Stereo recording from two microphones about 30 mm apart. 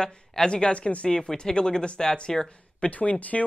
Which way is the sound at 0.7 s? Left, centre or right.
Left.